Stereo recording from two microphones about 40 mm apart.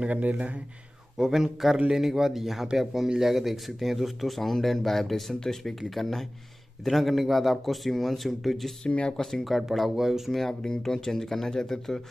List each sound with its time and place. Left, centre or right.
0.0 s speech: right
1.1 s speech: centre
8.8 s speech: left
9.1 s speech: centre
9.8 s speech: centre
10.6 s speech: centre